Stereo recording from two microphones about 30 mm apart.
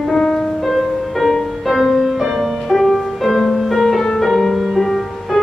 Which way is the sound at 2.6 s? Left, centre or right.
Centre.